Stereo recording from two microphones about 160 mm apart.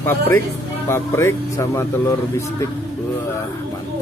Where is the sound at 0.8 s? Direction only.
15° left (ahead or behind).